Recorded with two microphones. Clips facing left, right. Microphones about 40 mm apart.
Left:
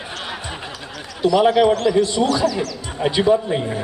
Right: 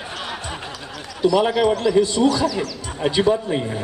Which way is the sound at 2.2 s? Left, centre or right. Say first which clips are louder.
Even; centre.